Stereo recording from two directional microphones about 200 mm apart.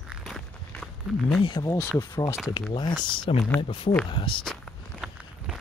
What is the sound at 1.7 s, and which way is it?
Speech, 15° left (ahead or behind).